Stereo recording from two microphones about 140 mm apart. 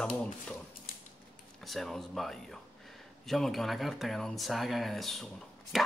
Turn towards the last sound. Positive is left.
turn(degrees=0)  # may be behind; listen again after turning